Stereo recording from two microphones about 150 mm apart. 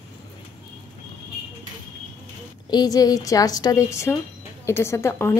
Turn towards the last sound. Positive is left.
turn(degrees=15)  # may be behind; listen again after turning